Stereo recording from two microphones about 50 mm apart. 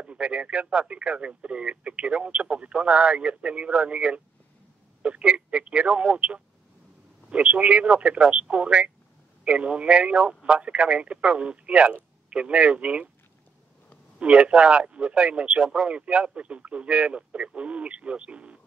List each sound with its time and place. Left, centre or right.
0.0 s speech: right
14.2 s speech: right